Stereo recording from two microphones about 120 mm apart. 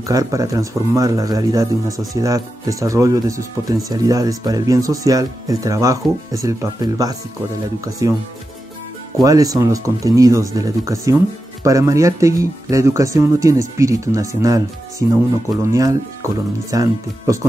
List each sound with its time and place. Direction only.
0.0 s a man's voice: 30° right (ahead or behind)
9.2 s a man's voice: 30° right (ahead or behind)